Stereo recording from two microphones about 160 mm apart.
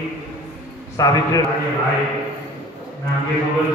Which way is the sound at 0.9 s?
20° left (ahead or behind).